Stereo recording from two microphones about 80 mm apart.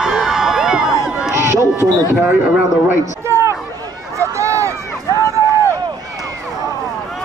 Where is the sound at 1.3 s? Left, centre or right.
Right.